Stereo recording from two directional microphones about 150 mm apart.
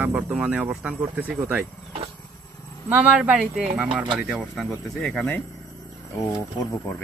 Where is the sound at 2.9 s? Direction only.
10° right (ahead or behind).